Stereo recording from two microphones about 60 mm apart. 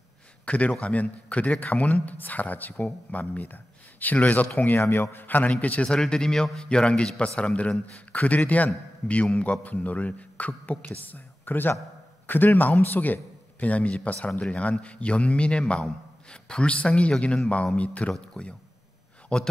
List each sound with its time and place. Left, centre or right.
0.5 s a man's voice: left
5.9 s a man's voice: centre